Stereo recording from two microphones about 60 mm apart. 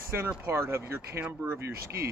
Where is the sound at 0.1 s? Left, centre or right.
Right.